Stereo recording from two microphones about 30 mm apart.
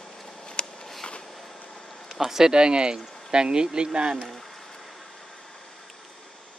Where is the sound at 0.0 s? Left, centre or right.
Centre.